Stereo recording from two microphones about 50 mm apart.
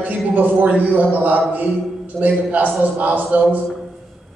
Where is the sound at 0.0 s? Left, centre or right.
Right.